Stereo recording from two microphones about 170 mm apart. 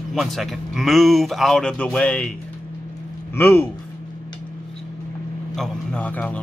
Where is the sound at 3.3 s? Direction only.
15° left (ahead or behind).